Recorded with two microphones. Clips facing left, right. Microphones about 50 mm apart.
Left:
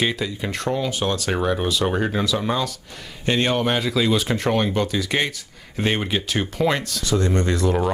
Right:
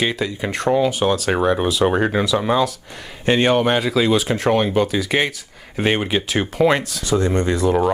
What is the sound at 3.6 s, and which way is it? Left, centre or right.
Speech, centre.